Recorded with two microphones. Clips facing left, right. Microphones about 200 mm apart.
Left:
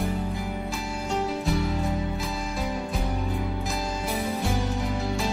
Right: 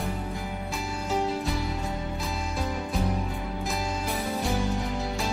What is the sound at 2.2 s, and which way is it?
Music, centre (ahead or behind).